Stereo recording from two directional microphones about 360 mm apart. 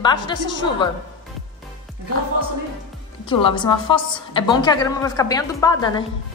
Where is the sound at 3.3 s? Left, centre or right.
Centre.